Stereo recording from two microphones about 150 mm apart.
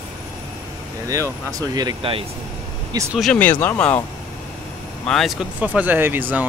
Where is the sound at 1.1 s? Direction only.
25° right (ahead or behind).